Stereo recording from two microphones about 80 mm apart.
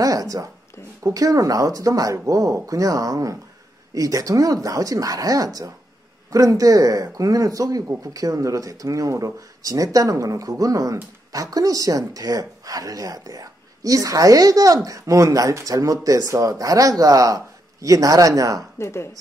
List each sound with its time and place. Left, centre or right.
0.0 s a woman's voice: right
18.8 s speech: left